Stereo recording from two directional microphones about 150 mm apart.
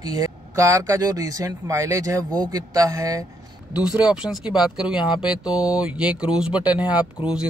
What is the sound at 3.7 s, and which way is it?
Speech, 5° right (ahead or behind).